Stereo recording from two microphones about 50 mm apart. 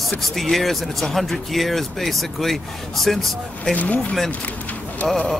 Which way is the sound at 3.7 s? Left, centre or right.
Left.